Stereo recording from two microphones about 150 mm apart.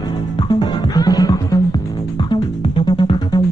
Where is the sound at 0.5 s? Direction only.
30° left (ahead or behind).